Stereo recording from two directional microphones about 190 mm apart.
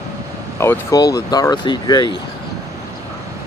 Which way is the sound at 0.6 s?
15° left (ahead or behind).